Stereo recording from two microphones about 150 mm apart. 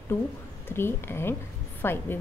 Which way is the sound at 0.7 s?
15° left (ahead or behind).